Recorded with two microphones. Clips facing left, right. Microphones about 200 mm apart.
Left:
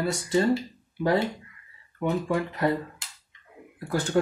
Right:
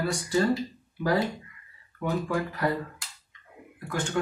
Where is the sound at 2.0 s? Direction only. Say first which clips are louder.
Left 2 dB; 25° left (ahead or behind).